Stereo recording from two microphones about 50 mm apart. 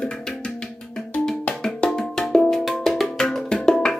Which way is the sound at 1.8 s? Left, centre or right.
Centre.